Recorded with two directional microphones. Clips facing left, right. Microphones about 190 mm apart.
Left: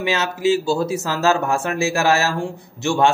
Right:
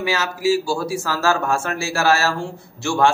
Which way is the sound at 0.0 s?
20° left (ahead or behind).